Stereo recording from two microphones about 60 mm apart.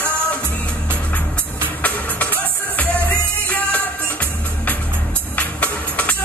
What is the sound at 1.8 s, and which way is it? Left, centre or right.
Music, left.